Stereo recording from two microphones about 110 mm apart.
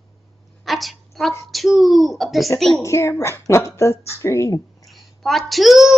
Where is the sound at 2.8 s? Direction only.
25° left (ahead or behind).